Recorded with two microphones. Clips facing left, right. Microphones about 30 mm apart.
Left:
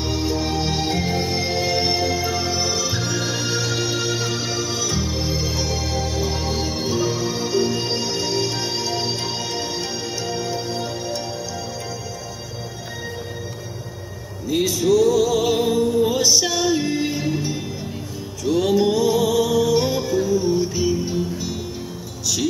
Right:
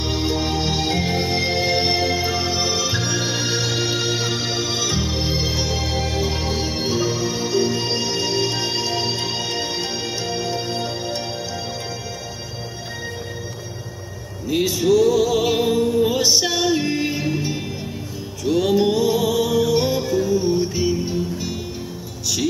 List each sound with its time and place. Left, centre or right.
0.0 s music: right
0.5 s music: centre
14.5 s music: right
18.5 s music: centre